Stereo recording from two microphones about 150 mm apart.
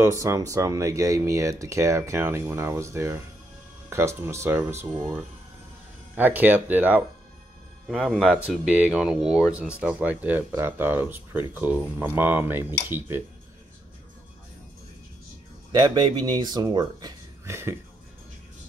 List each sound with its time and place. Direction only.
0.0 s speech: 20° right (ahead or behind)
6.1 s speech: 10° right (ahead or behind)
15.7 s speech: 30° right (ahead or behind)